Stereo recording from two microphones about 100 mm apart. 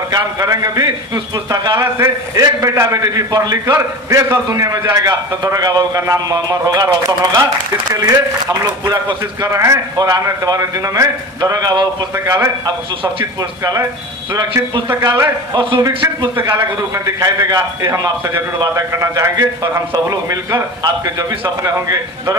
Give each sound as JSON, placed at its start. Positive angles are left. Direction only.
{"t": 0.1, "sound": "a man's voice", "side_deg": -35}
{"t": 13.4, "sound": "a man's voice", "side_deg": -40}
{"t": 15.1, "sound": "a man's voice", "side_deg": -40}
{"t": 15.9, "sound": "a man's voice", "side_deg": -55}
{"t": 16.4, "sound": "a man's voice", "side_deg": -40}